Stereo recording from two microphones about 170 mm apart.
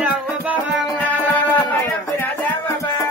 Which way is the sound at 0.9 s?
10° left (ahead or behind).